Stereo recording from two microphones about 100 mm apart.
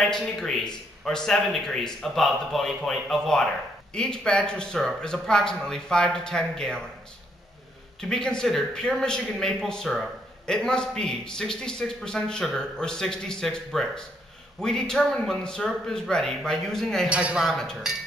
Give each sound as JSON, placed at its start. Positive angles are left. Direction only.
{"t": 0.1, "sound": "a man's voice", "side_deg": 5}
{"t": 8.0, "sound": "a man's voice", "side_deg": 5}
{"t": 17.1, "sound": "speech", "side_deg": -10}
{"t": 17.5, "sound": "a man's voice", "side_deg": 5}